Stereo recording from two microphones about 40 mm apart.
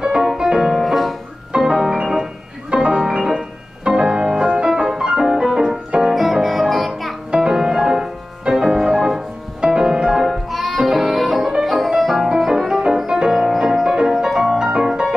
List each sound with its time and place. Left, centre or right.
0.0 s music: centre
2.7 s music: right
3.0 s music: centre
7.2 s music: centre
10.2 s music: centre